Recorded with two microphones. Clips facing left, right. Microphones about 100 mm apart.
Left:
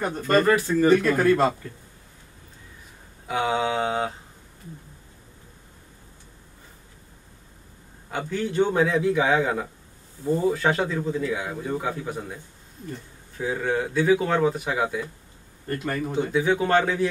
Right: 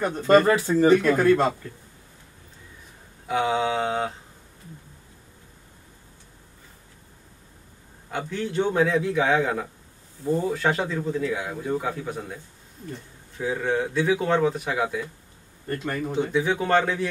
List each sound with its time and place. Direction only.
0.2 s speech: 20° right (ahead or behind)
0.9 s a man's voice: centre (ahead or behind)
3.3 s a man's voice: centre (ahead or behind)
8.1 s a man's voice: centre (ahead or behind)
13.4 s a man's voice: centre (ahead or behind)